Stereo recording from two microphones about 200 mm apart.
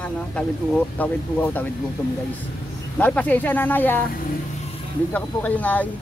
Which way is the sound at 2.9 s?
10° left (ahead or behind).